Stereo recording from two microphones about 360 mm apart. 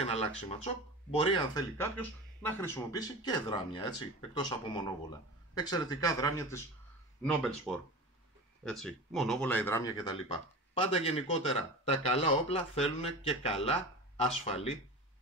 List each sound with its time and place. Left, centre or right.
0.0 s speech: centre